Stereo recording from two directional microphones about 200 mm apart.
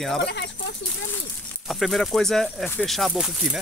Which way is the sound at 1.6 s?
Centre (ahead or behind).